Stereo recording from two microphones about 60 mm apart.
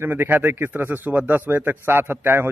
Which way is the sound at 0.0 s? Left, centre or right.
Right.